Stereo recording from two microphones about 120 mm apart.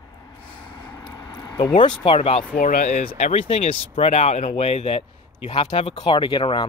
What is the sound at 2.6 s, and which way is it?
Speech, 85° left.